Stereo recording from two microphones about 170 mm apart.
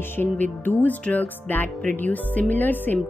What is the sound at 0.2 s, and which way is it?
Speech, 10° left (ahead or behind).